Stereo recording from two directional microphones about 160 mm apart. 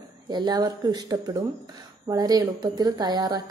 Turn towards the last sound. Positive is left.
turn(degrees=-25)  # may be behind; listen again after turning